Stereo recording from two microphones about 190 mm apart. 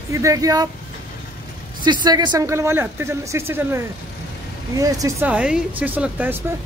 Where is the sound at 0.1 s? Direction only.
15° right (ahead or behind).